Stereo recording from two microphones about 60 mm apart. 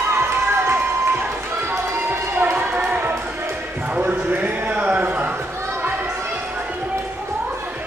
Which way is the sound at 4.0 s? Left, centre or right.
Right.